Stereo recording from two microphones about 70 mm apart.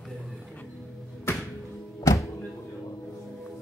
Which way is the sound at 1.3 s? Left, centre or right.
Left.